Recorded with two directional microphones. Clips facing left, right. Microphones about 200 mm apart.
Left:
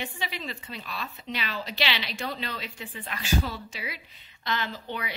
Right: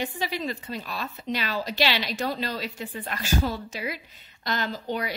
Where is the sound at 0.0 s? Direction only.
40° right (ahead or behind).